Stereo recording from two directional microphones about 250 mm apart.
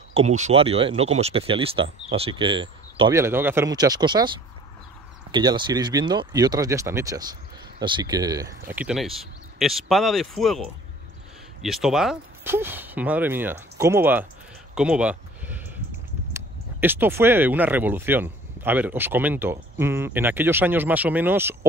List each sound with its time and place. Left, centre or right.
0.1 s speech: right
5.3 s speech: centre
14.8 s a sound: centre
16.3 s speech: centre